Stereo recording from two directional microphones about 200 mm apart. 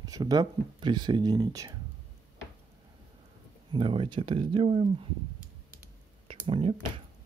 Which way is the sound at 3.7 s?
25° right (ahead or behind).